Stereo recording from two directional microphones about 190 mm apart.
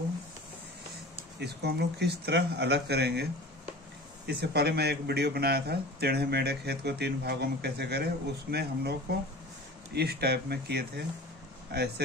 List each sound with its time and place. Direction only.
1.4 s a man's voice: 60° right (ahead or behind)
4.3 s a man's voice: 60° right (ahead or behind)
9.9 s a man's voice: 55° right (ahead or behind)